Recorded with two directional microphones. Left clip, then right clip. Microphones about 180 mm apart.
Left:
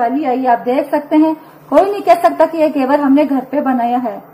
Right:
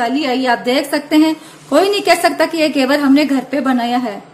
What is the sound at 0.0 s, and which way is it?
A woman's voice, 25° right (ahead or behind).